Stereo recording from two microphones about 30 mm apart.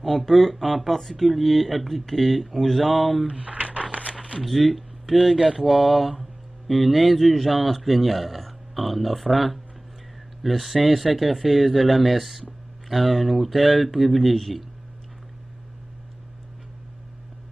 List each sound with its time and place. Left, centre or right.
0.0 s speech: centre
3.3 s a sound: right
4.4 s speech: centre